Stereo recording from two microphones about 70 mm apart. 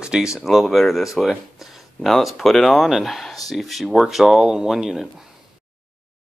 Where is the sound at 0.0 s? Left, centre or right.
Centre.